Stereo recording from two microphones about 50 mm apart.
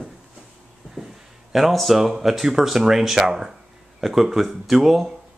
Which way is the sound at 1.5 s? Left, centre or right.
Centre.